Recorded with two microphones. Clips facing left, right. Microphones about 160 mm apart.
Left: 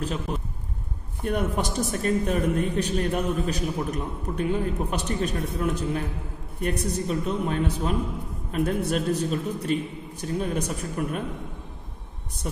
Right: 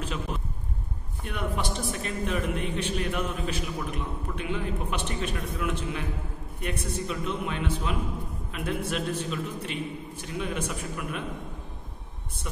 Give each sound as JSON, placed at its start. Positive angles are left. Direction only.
{"t": 1.2, "sound": "a man's voice", "side_deg": 45}